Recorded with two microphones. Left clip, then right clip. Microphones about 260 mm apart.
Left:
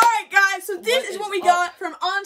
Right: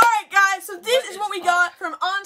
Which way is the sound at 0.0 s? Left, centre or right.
Centre.